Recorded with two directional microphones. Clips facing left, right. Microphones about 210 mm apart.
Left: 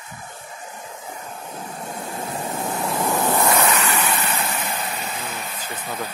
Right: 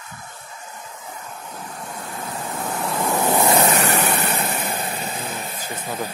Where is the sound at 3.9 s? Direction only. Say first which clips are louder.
Right 2 dB; 60° right (ahead or behind).